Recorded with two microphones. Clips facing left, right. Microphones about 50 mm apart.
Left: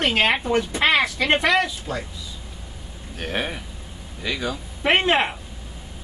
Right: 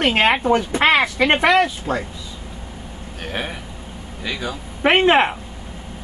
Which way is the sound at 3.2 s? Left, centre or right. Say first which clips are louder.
Left 1 dB; centre.